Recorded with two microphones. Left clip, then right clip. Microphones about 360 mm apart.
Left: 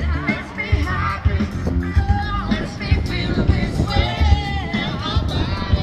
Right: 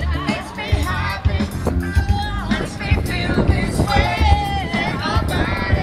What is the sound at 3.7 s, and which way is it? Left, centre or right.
Music, right.